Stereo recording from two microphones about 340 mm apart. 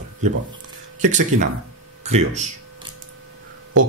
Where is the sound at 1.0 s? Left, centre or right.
Right.